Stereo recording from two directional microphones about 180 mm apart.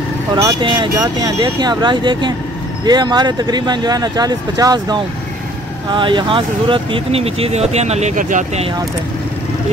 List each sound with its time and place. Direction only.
0.3 s speech: 20° right (ahead or behind); by 8.6 s 45° right (ahead or behind)